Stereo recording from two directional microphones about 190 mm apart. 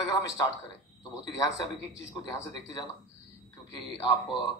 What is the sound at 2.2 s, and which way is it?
Speech, 20° left (ahead or behind).